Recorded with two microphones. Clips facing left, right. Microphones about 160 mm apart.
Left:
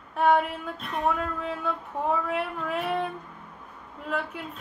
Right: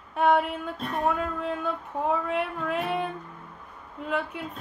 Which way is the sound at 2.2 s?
Centre (ahead or behind).